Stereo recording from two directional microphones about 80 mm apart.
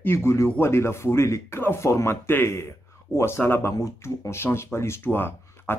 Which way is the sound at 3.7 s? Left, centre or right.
Left.